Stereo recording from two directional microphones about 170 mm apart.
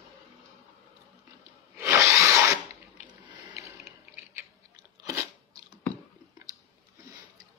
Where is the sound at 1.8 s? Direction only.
15° right (ahead or behind).